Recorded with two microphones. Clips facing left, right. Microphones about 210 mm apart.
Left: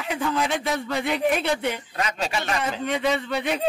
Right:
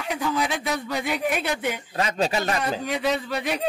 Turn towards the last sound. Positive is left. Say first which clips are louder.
# left 1 dB
turn(degrees=0)  # may be behind; listen again after turning